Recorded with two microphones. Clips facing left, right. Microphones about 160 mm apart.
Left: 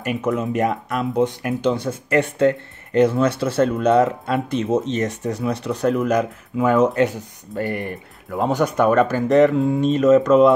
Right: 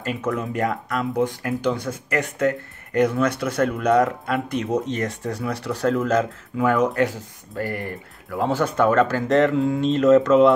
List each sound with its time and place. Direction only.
0.0 s speech: 20° left (ahead or behind)